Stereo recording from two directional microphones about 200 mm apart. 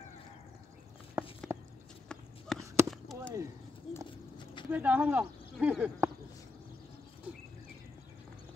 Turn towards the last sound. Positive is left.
turn(degrees=-5)  # may be behind; listen again after turning